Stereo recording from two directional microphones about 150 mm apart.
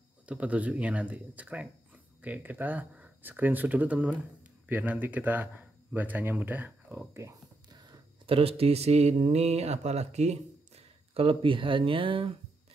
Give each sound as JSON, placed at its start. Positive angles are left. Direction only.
{"t": 0.3, "sound": "speech", "side_deg": -10}
{"t": 11.1, "sound": "speech", "side_deg": -35}